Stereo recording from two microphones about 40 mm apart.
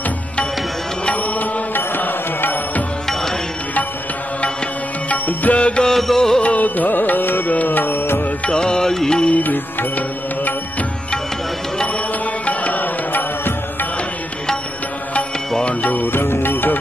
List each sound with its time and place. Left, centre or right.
1.1 s music: left
1.8 s music: left
5.1 s music: left
5.6 s music: left
5.9 s music: centre
6.4 s music: left
8.5 s music: left
9.3 s music: left
12.4 s music: left
15.8 s music: left
16.1 s music: left